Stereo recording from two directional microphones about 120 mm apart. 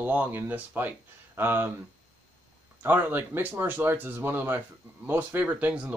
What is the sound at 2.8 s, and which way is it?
A man's voice, 20° right (ahead or behind).